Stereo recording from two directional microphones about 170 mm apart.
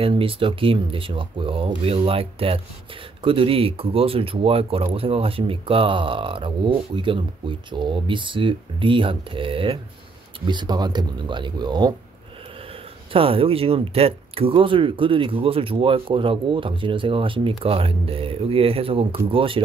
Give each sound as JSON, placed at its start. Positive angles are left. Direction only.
{"t": 0.0, "sound": "speech", "side_deg": -30}
{"t": 13.1, "sound": "speech", "side_deg": -35}